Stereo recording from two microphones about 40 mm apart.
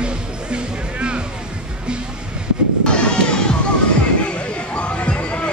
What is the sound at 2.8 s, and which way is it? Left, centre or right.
Music, left.